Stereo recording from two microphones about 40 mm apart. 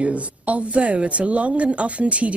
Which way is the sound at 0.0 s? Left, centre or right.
Right.